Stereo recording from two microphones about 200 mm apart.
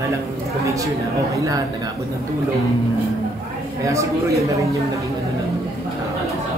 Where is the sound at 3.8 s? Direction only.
15° right (ahead or behind).